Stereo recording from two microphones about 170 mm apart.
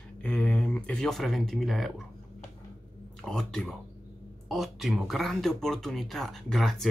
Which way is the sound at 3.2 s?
5° left (ahead or behind).